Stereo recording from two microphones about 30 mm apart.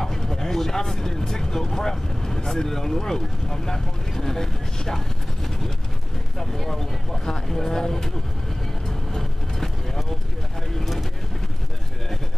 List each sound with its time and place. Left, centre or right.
0.0 s speech: centre
8.8 s vehicle: centre